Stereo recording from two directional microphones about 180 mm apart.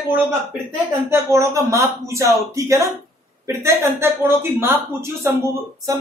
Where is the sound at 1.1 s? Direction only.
15° right (ahead or behind).